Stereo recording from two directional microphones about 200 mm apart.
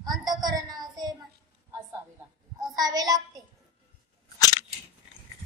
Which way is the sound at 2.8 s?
20° right (ahead or behind).